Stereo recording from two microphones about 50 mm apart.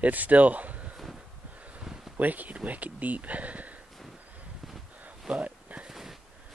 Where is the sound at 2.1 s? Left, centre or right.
Right.